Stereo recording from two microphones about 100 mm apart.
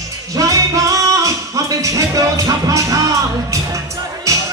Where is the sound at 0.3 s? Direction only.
35° right (ahead or behind).